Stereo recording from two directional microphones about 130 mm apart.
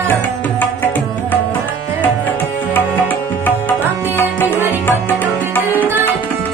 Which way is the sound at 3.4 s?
15° left (ahead or behind).